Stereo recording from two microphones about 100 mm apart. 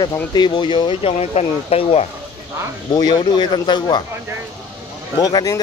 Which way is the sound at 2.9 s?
45° left (ahead or behind).